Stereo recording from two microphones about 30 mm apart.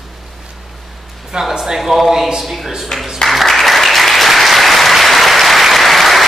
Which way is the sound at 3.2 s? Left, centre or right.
Centre.